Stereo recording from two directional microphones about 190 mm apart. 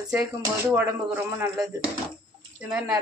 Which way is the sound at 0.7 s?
10° right (ahead or behind).